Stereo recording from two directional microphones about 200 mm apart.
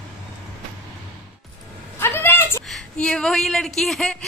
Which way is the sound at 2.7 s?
5° left (ahead or behind).